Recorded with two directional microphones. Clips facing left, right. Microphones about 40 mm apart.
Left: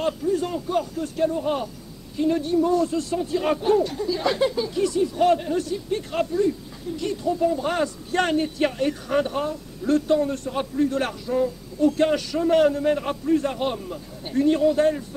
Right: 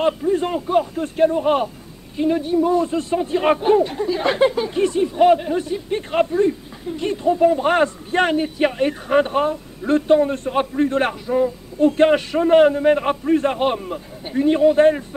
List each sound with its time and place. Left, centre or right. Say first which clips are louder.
0.0 s speech: right 5 dB; right
2.1 s speech: right 3 dB; centre; by 8.2 s right
8.2 s speech: right 4 dB; centre
8.7 s speech: right 5 dB; right
11.2 s speech: right 2 dB; centre
11.8 s speech: right 5 dB; right
14.2 s speech: right 4 dB; right